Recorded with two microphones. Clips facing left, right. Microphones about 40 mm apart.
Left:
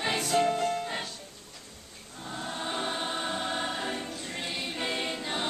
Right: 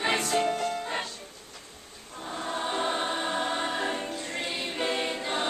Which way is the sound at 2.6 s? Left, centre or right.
Centre.